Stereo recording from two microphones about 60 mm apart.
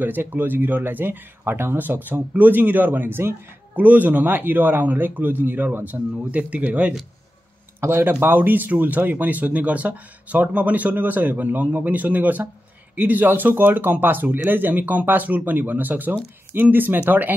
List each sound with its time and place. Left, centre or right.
0.0 s a man's voice: right
8.0 s a man's voice: right